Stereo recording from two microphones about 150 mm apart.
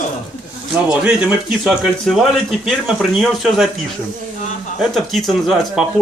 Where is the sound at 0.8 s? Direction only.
5° right (ahead or behind).